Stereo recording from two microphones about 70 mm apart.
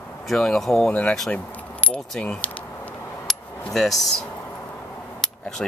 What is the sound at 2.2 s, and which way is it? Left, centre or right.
Speech, centre.